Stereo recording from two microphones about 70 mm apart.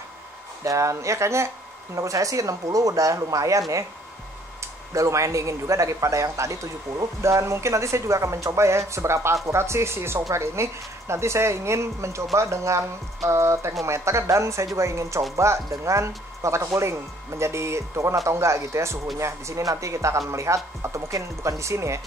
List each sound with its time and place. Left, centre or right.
0.7 s a man's voice: right
2.0 s a man's voice: right
4.9 s a man's voice: right